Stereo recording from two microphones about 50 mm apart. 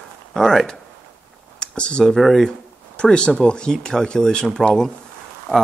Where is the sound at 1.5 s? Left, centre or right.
Centre.